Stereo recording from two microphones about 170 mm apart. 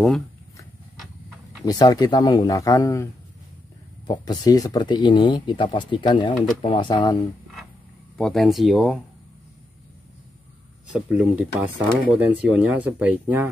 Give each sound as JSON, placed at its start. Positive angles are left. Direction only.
{"t": 1.7, "sound": "speech", "side_deg": 25}
{"t": 4.1, "sound": "speech", "side_deg": 20}
{"t": 8.2, "sound": "speech", "side_deg": 0}
{"t": 10.9, "sound": "speech", "side_deg": -10}